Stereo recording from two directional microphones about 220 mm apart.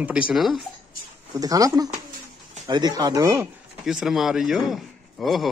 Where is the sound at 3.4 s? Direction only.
5° right (ahead or behind).